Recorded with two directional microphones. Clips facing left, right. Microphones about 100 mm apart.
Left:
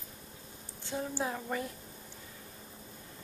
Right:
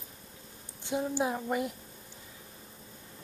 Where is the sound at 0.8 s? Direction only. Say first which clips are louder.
Right 5 dB; 15° right (ahead or behind).